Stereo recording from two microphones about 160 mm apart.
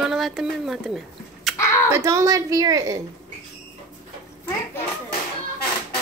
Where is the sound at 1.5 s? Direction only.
15° left (ahead or behind).